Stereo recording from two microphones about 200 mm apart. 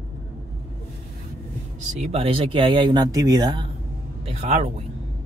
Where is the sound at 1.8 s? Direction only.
30° right (ahead or behind).